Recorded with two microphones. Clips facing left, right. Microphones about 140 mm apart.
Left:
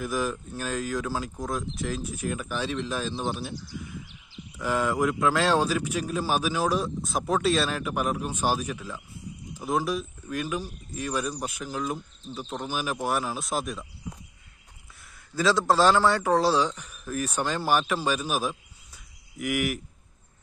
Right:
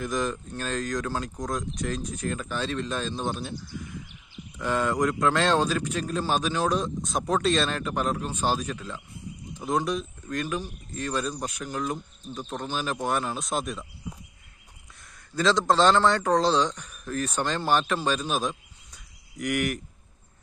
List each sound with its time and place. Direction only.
0.0 s a man's voice: 5° left (ahead or behind)
4.6 s a man's voice: 10° left (ahead or behind)
15.3 s a man's voice: 10° left (ahead or behind)